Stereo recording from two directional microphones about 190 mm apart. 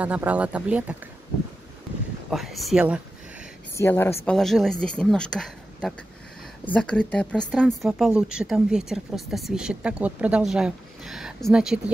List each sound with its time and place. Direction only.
0.0 s speech: 5° right (ahead or behind)
2.3 s speech: centre (ahead or behind)
3.7 s speech: 10° left (ahead or behind)